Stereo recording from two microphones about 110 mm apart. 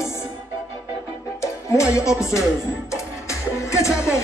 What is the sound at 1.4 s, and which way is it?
Music, 30° left (ahead or behind).